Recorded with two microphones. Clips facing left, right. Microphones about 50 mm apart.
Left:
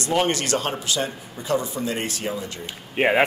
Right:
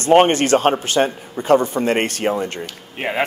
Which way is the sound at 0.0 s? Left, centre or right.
Right.